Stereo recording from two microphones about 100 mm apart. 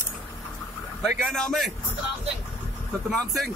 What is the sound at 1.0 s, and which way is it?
Speech, centre (ahead or behind).